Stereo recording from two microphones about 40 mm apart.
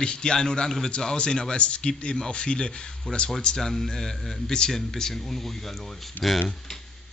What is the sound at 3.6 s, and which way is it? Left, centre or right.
A man's voice, centre.